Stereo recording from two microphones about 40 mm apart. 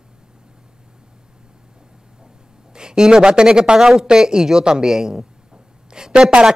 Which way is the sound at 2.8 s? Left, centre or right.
Centre.